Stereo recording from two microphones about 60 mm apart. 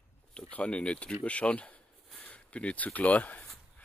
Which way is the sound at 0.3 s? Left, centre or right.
Left.